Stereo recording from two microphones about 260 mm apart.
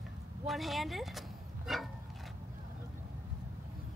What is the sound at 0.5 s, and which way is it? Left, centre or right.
A woman's voice, centre.